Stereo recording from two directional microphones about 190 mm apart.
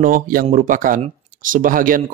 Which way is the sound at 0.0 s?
50° right (ahead or behind).